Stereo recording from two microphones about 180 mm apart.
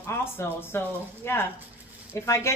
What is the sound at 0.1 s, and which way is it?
A woman's voice, 10° left (ahead or behind).